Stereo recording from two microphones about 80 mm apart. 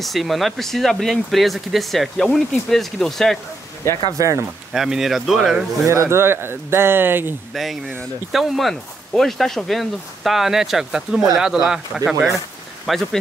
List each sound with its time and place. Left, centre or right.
0.0 s speech: centre
4.2 s speech: right
4.7 s speech: centre
5.9 s speech: right
7.5 s speech: centre